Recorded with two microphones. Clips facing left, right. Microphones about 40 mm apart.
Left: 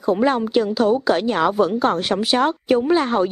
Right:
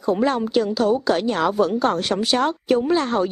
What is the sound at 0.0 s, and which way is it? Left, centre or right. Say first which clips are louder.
A woman's voice: left 2 dB; centre.